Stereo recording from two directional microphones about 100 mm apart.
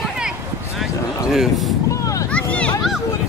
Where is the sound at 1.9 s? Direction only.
35° left (ahead or behind).